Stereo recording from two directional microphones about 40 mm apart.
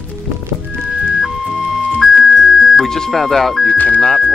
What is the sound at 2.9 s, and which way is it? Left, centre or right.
Speech, centre.